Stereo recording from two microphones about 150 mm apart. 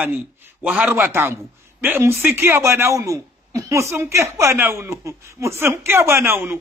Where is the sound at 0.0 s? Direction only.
10° right (ahead or behind).